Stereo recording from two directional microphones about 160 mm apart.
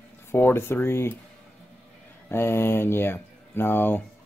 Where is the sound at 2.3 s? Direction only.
15° left (ahead or behind).